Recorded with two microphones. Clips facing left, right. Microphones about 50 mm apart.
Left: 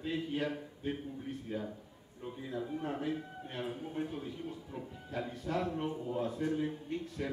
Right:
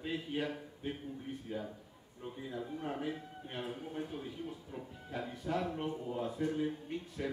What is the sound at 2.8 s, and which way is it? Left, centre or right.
Speech, centre.